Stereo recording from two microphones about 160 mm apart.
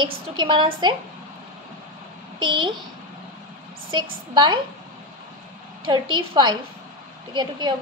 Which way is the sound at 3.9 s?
30° right (ahead or behind).